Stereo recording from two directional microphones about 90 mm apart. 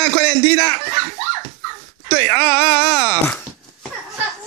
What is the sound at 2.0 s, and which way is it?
Wail, 25° left (ahead or behind).